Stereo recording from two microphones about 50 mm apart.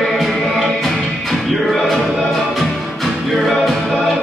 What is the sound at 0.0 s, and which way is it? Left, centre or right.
Music, centre.